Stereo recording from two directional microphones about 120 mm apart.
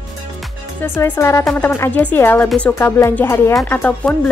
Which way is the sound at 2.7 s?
20° left (ahead or behind).